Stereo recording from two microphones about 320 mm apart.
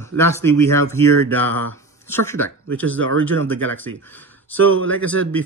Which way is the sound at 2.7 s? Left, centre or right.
Right.